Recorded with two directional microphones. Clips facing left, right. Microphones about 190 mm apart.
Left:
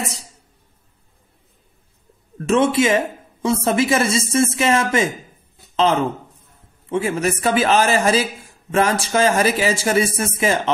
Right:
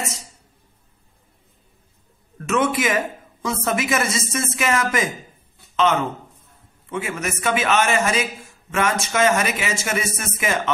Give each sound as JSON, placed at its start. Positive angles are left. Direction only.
{"t": 2.4, "sound": "a woman's voice", "side_deg": 30}
{"t": 6.9, "sound": "speech", "side_deg": 30}